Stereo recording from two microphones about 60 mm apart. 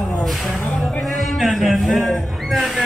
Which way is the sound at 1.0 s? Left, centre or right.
Centre.